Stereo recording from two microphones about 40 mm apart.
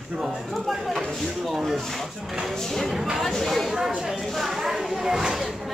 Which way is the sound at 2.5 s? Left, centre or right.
Centre.